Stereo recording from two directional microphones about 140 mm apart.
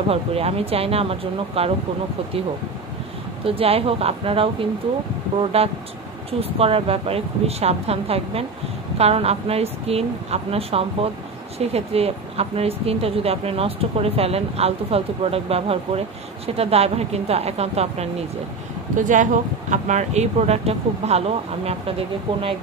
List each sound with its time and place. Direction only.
0.1 s speech: 45° right (ahead or behind)
3.4 s a woman's voice: 45° right (ahead or behind)
18.9 s speech: 65° right (ahead or behind); by 21.9 s 45° right (ahead or behind)